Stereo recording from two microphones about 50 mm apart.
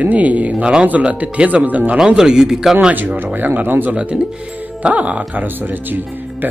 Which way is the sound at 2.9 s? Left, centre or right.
Right.